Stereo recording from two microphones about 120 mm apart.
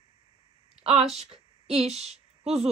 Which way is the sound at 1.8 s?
65° right (ahead or behind).